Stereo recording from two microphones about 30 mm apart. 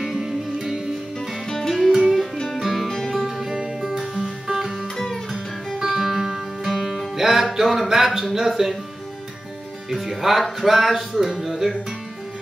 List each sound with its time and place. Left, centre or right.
1.9 s music: centre
2.3 s music: centre
2.6 s music: centre
3.2 s music: centre
4.9 s music: centre
5.8 s music: centre
7.9 s speech: centre
9.8 s speech: centre